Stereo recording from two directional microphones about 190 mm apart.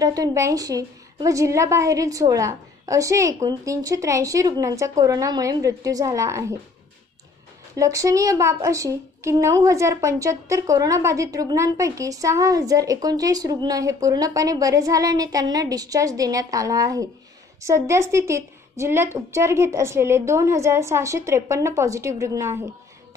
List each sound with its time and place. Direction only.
0.0 s a woman's voice: 20° right (ahead or behind)
7.7 s a woman's voice: 15° right (ahead or behind)